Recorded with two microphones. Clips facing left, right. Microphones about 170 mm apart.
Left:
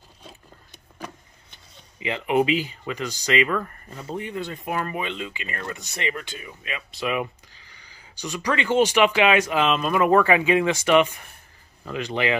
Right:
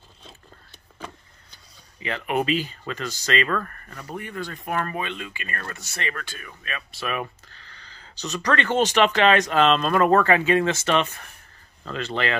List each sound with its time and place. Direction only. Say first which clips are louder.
1.5 s speech: left 3 dB; 20° left (ahead or behind)